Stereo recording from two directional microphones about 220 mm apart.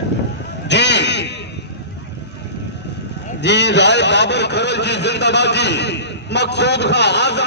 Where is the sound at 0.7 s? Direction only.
50° left (ahead or behind).